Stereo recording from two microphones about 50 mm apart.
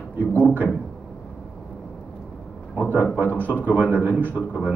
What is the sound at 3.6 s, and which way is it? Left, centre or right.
Speech, right.